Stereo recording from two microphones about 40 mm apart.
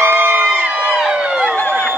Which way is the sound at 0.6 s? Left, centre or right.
Right.